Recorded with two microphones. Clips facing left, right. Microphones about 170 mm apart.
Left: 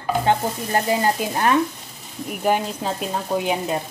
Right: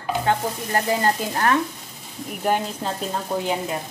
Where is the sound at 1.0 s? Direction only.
15° left (ahead or behind).